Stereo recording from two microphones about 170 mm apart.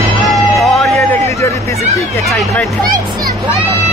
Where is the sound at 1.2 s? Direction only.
15° left (ahead or behind).